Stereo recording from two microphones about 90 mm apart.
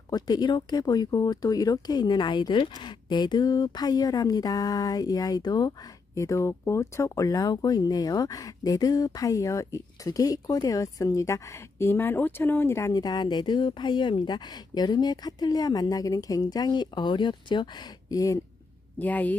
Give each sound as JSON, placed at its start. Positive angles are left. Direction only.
{"t": 0.1, "sound": "speech", "side_deg": 50}
{"t": 12.9, "sound": "speech", "side_deg": 50}
{"t": 18.9, "sound": "a woman's voice", "side_deg": 20}